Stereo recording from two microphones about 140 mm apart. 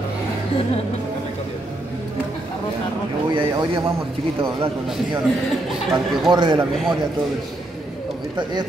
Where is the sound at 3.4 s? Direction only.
40° right (ahead or behind).